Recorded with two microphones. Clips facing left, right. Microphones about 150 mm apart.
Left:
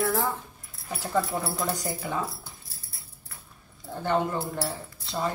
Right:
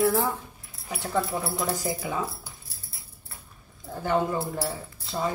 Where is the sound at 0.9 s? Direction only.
5° right (ahead or behind).